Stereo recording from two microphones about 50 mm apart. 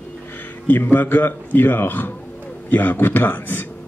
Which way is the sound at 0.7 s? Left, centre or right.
Left.